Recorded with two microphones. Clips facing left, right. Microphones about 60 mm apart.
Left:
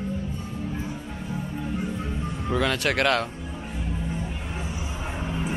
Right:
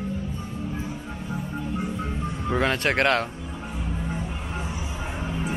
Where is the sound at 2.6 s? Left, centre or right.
Right.